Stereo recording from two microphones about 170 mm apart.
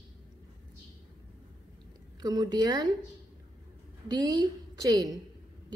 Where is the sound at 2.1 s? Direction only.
25° right (ahead or behind).